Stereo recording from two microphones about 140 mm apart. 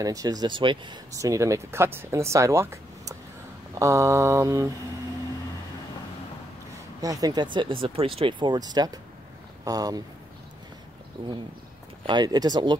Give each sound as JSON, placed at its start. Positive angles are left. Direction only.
{"t": 0.0, "sound": "speech", "side_deg": -25}
{"t": 1.1, "sound": "speech", "side_deg": -25}
{"t": 7.0, "sound": "speech", "side_deg": -25}
{"t": 11.2, "sound": "speech", "side_deg": -35}